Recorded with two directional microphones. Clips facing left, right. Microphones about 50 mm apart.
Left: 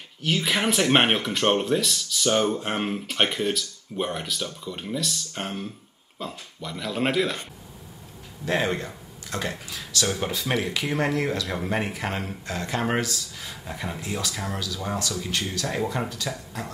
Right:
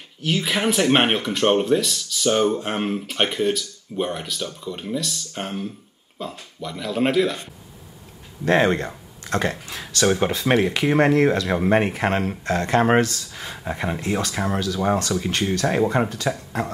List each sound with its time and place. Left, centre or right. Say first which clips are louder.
0.2 s speech: right 2 dB; centre
8.5 s speech: right 7 dB; right